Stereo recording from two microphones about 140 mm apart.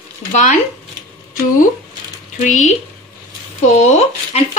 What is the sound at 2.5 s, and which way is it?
Speech, 60° left (ahead or behind).